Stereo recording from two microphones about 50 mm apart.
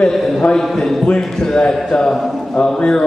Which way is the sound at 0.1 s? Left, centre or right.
Centre.